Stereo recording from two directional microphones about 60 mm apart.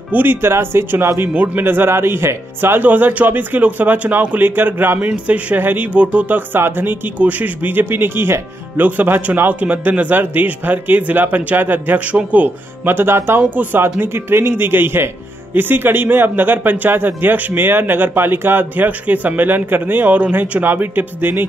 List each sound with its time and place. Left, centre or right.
0.1 s speech: right
1.3 s speech: right
2.8 s speech: right
12.8 s speech: right
13.4 s speech: right
14.0 s speech: right